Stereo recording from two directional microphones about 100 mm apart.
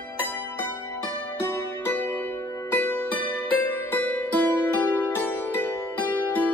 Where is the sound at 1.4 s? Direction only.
20° left (ahead or behind).